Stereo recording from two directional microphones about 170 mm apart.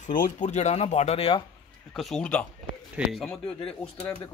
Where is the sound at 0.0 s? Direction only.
50° left (ahead or behind).